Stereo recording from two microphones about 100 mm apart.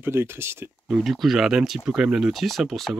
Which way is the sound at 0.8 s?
Centre (ahead or behind).